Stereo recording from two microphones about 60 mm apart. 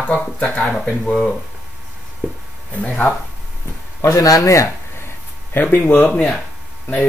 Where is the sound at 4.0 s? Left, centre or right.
Left.